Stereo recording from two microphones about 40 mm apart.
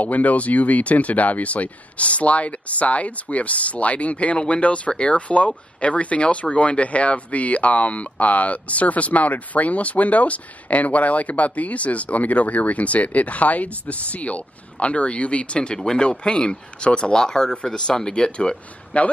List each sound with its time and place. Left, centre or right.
0.0 s speech: left
18.9 s speech: left